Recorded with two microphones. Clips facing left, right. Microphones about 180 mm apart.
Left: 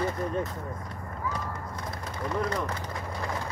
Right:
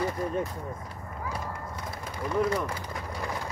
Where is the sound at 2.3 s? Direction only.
10° right (ahead or behind).